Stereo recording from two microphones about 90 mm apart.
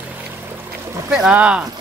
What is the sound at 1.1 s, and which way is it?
Speech, 10° right (ahead or behind).